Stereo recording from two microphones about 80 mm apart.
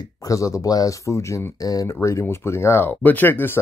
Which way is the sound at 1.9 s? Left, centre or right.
Left.